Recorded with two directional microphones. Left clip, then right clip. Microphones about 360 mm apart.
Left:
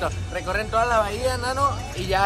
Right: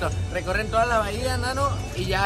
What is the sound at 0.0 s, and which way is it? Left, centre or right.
Speech, centre.